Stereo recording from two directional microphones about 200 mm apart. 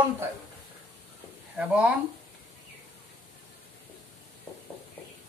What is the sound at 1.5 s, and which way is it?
Speech, 5° right (ahead or behind).